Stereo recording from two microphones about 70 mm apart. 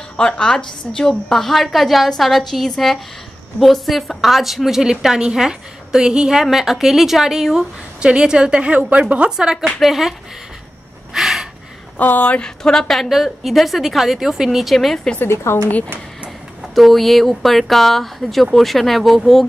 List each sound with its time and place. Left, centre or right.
0.2 s a woman's voice: centre
11.1 s a sound: centre
12.0 s a woman's voice: left; by 15.0 s centre
15.2 s a woman's voice: left
16.7 s a woman's voice: centre